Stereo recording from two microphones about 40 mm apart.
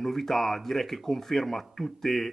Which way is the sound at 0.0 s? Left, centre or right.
Centre.